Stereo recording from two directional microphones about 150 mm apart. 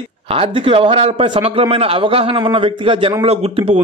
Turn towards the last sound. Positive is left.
turn(degrees=-40)  # may be behind; listen again after turning